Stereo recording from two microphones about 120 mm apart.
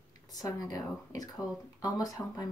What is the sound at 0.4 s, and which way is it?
Speech, 30° left (ahead or behind).